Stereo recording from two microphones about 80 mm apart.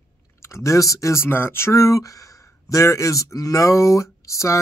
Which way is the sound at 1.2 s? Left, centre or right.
Left.